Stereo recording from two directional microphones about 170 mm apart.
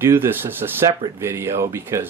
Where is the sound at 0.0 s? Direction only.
15° right (ahead or behind).